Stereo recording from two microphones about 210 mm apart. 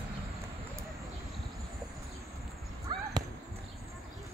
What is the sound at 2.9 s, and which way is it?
Basketball bounce, 20° right (ahead or behind).